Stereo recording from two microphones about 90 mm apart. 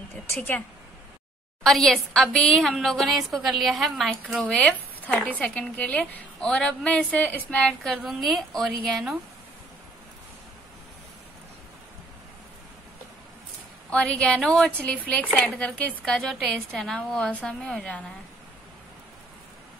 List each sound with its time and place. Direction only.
1.6 s a woman's voice: 5° left (ahead or behind)
4.4 s speech: 10° left (ahead or behind)
8.1 s a woman's voice: centre (ahead or behind)
13.8 s a woman's voice: 10° left (ahead or behind)
14.8 s speech: 15° left (ahead or behind)